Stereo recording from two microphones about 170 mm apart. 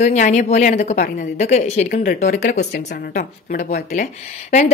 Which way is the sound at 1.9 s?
60° left (ahead or behind).